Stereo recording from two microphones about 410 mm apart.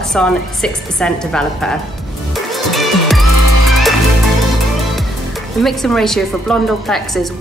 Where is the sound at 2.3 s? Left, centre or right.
Centre.